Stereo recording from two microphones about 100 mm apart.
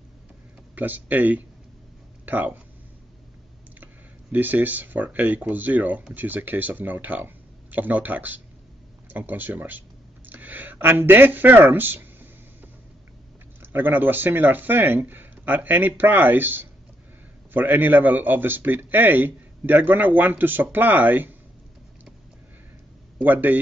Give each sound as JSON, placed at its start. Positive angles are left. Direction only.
{"t": 0.7, "sound": "speech", "side_deg": -20}
{"t": 3.8, "sound": "speech", "side_deg": -20}
{"t": 13.6, "sound": "speech", "side_deg": -20}
{"t": 23.2, "sound": "speech", "side_deg": -20}